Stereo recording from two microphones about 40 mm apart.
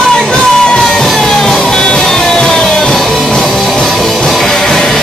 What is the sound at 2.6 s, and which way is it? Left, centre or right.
Music, centre.